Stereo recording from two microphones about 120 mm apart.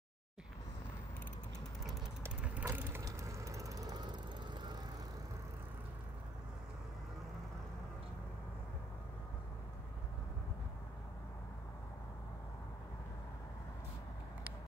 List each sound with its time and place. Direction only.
2.2 s vehicle: 10° right (ahead or behind); by 4.7 s 40° right (ahead or behind)